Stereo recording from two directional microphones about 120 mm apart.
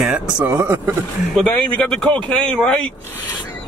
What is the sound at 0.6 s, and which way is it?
Speech, 20° right (ahead or behind).